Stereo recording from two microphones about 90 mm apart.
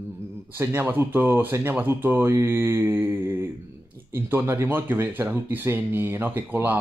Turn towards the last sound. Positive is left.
turn(degrees=-20)  # may be behind; listen again after turning